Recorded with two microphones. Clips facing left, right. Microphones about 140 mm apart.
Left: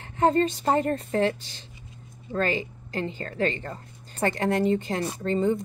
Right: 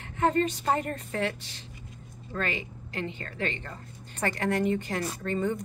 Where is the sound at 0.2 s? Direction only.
30° left (ahead or behind).